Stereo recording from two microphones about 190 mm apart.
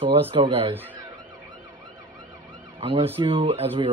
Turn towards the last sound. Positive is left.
turn(degrees=-30)  # may be behind; listen again after turning